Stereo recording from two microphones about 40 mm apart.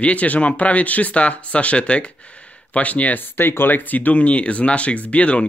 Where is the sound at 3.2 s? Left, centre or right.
Left.